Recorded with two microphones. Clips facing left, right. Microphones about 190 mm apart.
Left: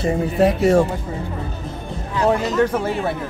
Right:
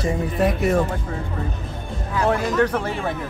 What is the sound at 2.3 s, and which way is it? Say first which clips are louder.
Speech: left 2 dB; 10° left (ahead or behind).